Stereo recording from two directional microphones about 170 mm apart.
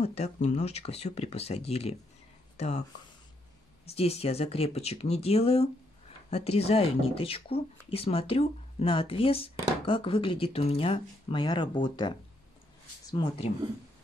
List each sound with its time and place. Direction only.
0.0 s speech: 40° left (ahead or behind)
3.9 s speech: 35° left (ahead or behind)